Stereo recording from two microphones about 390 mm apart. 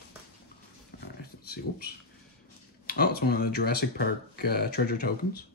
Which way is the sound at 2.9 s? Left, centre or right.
Left.